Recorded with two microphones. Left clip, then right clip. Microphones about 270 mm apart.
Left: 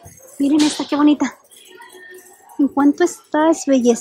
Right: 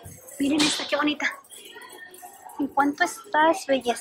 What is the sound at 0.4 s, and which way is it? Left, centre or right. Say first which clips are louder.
Speech: left 6 dB; centre.